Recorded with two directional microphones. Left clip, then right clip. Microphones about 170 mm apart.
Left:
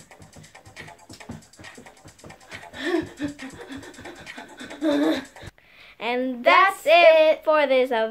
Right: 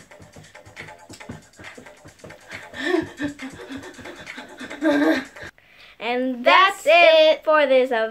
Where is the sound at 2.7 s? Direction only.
Centre (ahead or behind).